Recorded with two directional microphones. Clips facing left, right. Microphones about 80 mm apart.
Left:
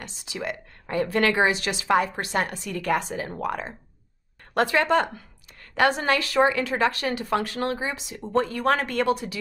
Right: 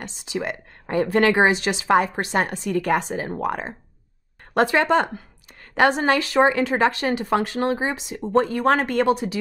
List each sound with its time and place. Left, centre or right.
0.0 s speech: right